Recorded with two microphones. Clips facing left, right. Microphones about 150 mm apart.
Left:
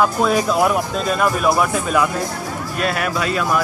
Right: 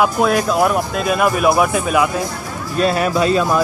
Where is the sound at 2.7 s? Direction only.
30° right (ahead or behind).